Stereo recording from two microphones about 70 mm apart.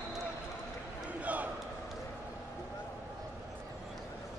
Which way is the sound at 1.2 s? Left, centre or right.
Right.